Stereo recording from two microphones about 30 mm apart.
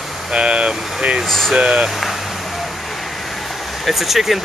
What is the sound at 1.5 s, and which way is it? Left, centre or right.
Speech, right.